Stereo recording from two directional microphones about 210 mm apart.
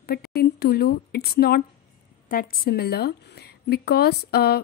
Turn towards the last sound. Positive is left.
turn(degrees=50)  # may be behind; listen again after turning